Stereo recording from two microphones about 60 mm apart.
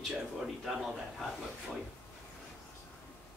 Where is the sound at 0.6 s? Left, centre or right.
Centre.